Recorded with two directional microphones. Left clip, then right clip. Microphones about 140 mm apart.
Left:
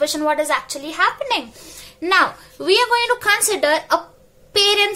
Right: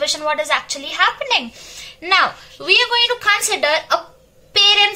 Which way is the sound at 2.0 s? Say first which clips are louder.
Right 1 dB; 55° left (ahead or behind).